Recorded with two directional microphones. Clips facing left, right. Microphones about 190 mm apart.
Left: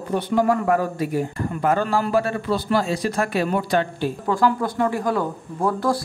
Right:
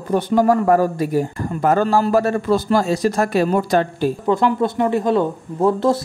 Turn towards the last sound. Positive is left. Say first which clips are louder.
# right 5 dB
turn(degrees=-25)  # may be behind; listen again after turning